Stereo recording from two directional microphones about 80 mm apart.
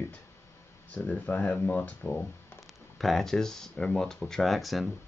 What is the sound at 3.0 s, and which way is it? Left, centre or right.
Speech, centre.